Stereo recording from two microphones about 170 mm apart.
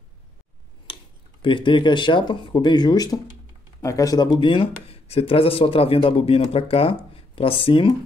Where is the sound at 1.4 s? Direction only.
30° left (ahead or behind).